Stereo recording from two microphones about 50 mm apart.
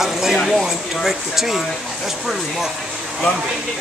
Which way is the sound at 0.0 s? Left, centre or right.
Centre.